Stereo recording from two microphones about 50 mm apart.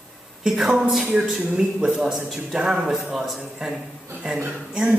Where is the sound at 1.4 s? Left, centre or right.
Centre.